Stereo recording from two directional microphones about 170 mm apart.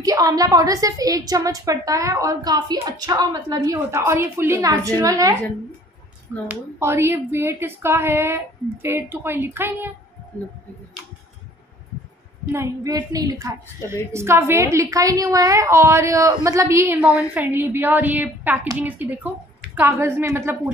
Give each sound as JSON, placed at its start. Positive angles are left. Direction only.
{"t": 0.0, "sound": "a woman's voice", "side_deg": -20}
{"t": 6.4, "sound": "a woman's voice", "side_deg": -10}
{"t": 12.5, "sound": "a woman's voice", "side_deg": -20}